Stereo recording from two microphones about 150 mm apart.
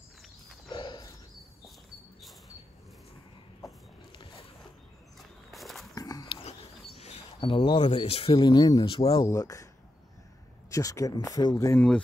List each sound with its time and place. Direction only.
0.7 s a sound: 35° left (ahead or behind)
5.5 s a sound: centre (ahead or behind)
5.9 s dog: 25° left (ahead or behind)
6.2 s speech: 40° left (ahead or behind)
9.3 s speech: 20° left (ahead or behind)
10.7 s speech: 20° left (ahead or behind)